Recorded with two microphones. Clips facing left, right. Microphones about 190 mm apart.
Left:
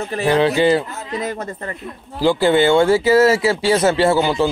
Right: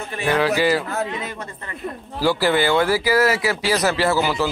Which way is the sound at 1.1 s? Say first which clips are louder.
Left 6 dB; 40° left (ahead or behind).